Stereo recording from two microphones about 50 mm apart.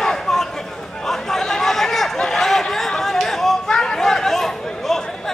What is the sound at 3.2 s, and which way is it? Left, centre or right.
Chatter, centre.